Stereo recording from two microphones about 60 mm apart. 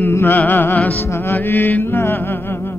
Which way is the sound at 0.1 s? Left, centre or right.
Left.